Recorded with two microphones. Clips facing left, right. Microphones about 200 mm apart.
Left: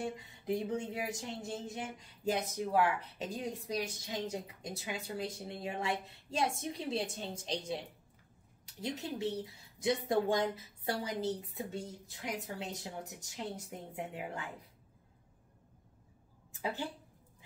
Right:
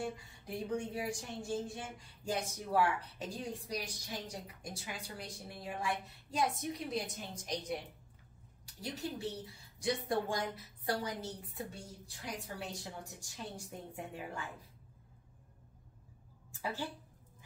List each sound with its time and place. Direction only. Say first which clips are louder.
0.0 s speech: left 2 dB; 20° left (ahead or behind)
8.9 s speech: left 3 dB; 20° left (ahead or behind)